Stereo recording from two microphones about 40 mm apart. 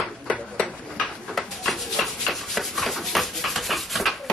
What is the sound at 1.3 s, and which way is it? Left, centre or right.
Rub, centre.